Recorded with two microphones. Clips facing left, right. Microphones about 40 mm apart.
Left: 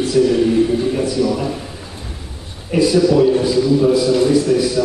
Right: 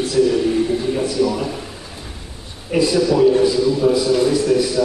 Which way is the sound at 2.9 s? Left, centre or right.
Centre.